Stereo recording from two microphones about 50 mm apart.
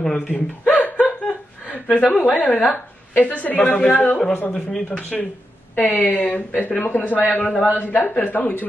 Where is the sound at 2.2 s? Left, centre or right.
Left.